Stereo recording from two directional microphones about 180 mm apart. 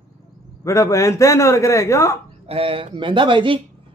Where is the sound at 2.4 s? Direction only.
30° right (ahead or behind).